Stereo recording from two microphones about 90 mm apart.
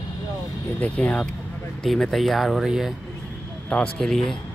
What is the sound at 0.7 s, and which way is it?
Speech, 15° left (ahead or behind).